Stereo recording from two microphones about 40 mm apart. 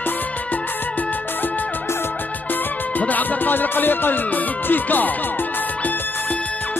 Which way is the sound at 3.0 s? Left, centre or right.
Left.